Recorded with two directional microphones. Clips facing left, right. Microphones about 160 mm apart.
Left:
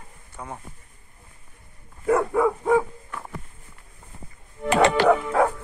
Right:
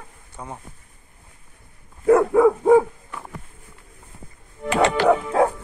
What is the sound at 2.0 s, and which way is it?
Dog, 10° right (ahead or behind).